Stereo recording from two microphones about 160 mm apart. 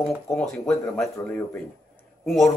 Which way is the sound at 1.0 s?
10° left (ahead or behind).